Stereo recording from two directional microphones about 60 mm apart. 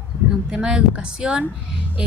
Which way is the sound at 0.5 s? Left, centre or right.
Centre.